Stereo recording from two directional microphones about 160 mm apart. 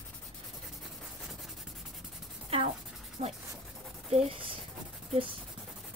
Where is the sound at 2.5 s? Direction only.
35° right (ahead or behind).